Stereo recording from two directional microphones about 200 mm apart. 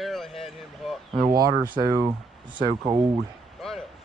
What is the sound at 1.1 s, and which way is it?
Speech, 20° right (ahead or behind).